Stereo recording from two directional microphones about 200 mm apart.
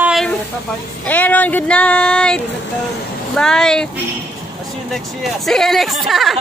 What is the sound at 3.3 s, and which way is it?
Speech, 5° left (ahead or behind).